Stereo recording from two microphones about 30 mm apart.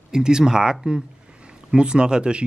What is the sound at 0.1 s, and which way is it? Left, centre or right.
Speech, right.